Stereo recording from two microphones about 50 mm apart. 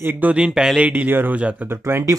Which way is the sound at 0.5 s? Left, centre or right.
Centre.